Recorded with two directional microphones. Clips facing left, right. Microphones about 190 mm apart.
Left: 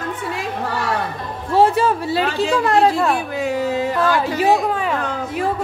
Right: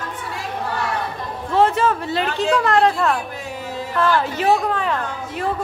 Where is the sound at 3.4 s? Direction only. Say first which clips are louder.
Left 9 dB; 85° left.